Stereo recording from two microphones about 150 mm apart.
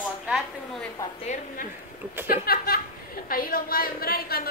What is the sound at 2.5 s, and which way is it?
A woman's voice, 75° left (ahead or behind).